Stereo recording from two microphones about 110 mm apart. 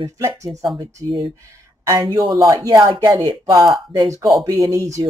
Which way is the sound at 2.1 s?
35° right (ahead or behind).